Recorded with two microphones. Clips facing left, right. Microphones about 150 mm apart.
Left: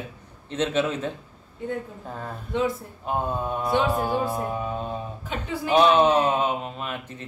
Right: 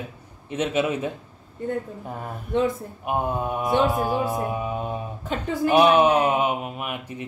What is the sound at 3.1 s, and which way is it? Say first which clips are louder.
Speech: right 2 dB; 15° right (ahead or behind).